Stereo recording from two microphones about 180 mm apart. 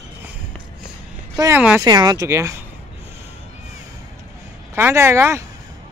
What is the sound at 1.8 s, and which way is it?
Speech, 20° right (ahead or behind).